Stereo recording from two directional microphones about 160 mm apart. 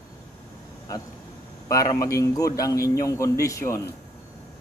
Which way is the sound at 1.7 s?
20° left (ahead or behind).